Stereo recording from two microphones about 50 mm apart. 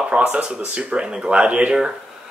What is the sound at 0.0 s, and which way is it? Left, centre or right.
A man's voice, right.